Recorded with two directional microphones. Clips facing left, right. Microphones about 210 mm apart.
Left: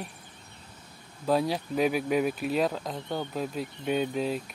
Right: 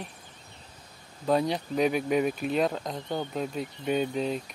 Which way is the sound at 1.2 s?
5° left (ahead or behind).